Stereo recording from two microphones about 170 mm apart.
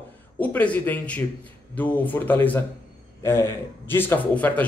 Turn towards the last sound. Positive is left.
turn(degrees=10)  # may be behind; listen again after turning